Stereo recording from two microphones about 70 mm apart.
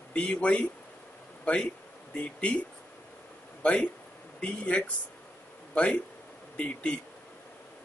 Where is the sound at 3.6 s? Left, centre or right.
Centre.